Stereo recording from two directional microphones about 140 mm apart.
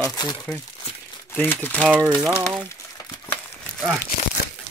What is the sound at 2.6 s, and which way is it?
Crumpling, 20° left (ahead or behind).